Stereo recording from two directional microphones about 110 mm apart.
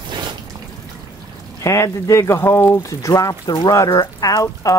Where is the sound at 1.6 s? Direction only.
30° left (ahead or behind).